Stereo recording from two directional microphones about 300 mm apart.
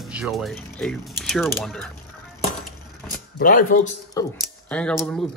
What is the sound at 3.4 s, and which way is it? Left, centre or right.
Speech, left.